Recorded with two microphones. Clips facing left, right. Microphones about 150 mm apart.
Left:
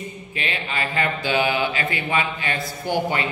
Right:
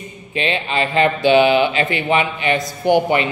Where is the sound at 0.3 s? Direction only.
25° right (ahead or behind).